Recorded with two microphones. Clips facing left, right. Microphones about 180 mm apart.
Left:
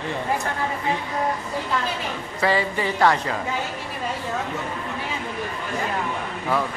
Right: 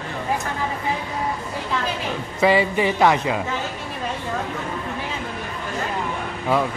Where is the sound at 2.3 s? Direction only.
15° right (ahead or behind).